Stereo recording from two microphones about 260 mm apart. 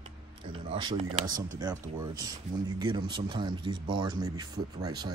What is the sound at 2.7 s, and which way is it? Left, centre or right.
Speech, centre.